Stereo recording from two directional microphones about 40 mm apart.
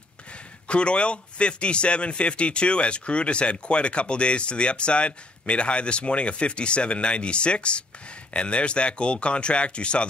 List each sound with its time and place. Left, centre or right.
0.7 s speech: left